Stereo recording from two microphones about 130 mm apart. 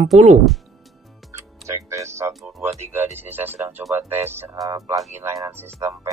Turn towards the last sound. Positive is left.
turn(degrees=-20)  # may be behind; listen again after turning